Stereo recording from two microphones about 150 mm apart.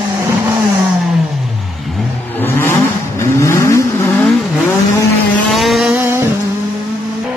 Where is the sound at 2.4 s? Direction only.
15° left (ahead or behind).